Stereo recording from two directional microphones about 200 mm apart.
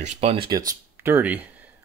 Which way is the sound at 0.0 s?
30° right (ahead or behind).